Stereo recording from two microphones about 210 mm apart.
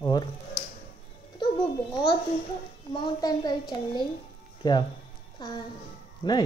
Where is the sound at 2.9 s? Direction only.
20° left (ahead or behind).